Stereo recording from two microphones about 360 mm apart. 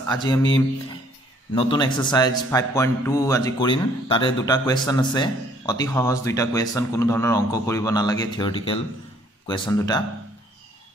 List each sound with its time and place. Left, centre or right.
0.2 s a man's voice: centre